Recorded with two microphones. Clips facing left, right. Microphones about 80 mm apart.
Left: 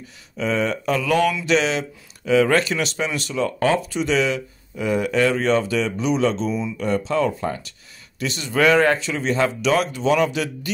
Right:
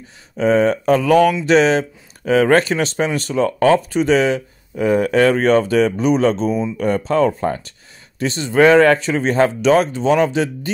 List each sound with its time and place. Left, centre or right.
0.0 s speech: right
8.8 s speech: right